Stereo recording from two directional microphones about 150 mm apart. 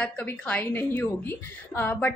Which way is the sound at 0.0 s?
10° left (ahead or behind).